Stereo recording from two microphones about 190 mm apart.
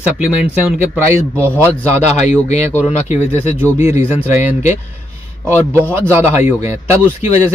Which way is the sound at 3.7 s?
15° right (ahead or behind).